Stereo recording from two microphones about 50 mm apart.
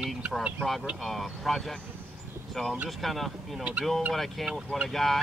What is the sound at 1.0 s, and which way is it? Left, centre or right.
Speech, centre.